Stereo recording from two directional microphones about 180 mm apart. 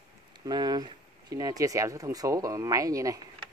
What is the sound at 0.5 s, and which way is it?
Speech, 20° right (ahead or behind).